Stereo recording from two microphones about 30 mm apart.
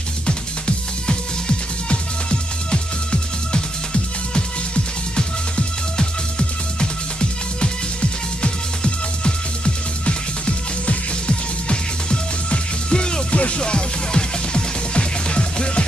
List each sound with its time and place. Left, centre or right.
0.3 s music: left
2.7 s music: left
13.3 s music: left
13.6 s music: left